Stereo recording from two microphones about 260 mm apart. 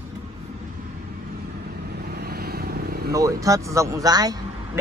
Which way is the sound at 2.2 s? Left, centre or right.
Right.